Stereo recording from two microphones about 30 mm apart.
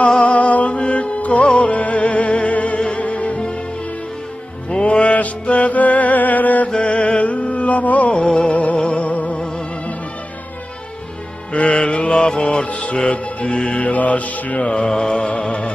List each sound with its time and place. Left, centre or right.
0.2 s music: left
4.6 s music: left
6.7 s a sound: left
8.2 s music: left
8.5 s music: left
11.5 s music: left
11.8 s mantra: left
12.2 s music: left
12.6 s music: left
13.9 s music: left
14.6 s mantra: left
15.1 s mantra: left